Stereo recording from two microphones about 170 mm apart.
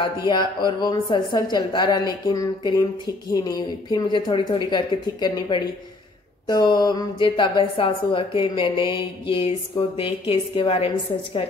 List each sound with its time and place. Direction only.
0.3 s a woman's voice: 25° left (ahead or behind)